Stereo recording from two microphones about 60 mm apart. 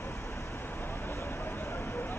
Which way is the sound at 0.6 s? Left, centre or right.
Left.